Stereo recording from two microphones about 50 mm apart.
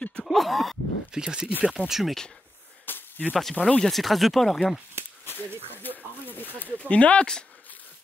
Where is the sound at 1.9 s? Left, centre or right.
Centre.